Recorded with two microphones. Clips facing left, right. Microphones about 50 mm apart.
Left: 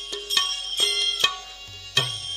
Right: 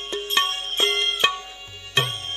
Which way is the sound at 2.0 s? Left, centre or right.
Right.